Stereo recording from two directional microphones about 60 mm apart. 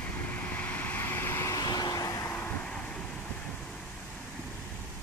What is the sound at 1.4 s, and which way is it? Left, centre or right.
Vehicle, left.